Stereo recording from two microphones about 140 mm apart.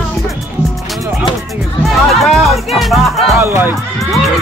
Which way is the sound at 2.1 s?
Centre (ahead or behind).